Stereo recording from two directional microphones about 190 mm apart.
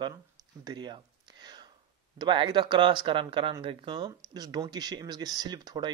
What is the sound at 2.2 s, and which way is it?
Speech, 25° right (ahead or behind).